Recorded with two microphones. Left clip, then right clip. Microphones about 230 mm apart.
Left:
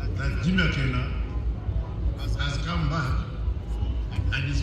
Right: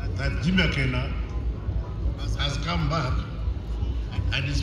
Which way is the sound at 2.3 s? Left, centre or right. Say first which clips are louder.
Right 3 dB; right.